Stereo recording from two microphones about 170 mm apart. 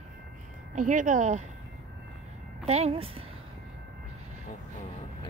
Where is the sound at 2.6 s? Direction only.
40° right (ahead or behind).